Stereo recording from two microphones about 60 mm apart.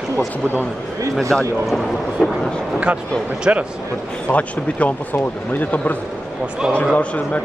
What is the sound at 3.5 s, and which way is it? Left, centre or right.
Speech, right.